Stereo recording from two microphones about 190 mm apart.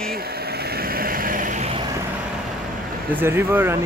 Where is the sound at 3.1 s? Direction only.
10° right (ahead or behind).